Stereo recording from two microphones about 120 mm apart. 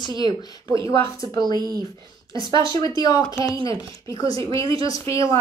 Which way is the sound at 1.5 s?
35° right (ahead or behind).